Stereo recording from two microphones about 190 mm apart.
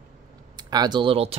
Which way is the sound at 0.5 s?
20° right (ahead or behind).